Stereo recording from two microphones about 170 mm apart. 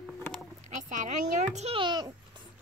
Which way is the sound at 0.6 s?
50° right (ahead or behind).